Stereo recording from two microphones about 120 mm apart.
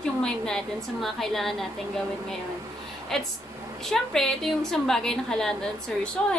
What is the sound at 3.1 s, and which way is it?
A woman's voice, 5° left (ahead or behind).